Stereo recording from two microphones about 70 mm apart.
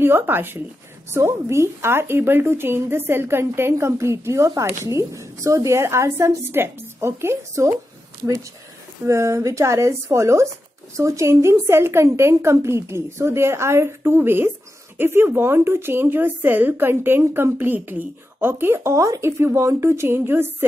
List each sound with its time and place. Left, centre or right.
0.0 s a woman's voice: right
9.0 s a woman's voice: right